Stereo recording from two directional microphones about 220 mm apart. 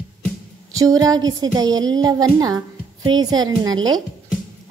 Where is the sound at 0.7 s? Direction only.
15° right (ahead or behind).